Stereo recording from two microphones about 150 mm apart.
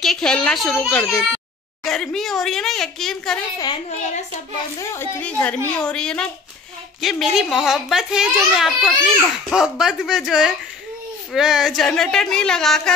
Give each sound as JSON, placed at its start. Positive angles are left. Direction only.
{"t": 0.0, "sound": "a child's voice", "side_deg": 5}
{"t": 1.9, "sound": "a child's voice", "side_deg": 0}
{"t": 3.5, "sound": "a child's voice", "side_deg": 30}
{"t": 5.2, "sound": "a woman's voice", "side_deg": 10}